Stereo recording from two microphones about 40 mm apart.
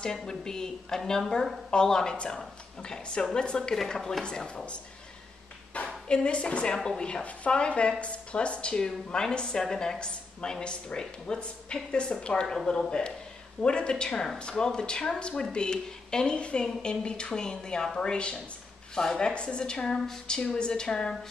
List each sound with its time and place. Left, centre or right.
0.0 s a woman's voice: centre
6.0 s a woman's voice: left